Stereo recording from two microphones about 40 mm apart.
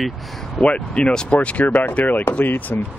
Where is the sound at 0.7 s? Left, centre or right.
Left.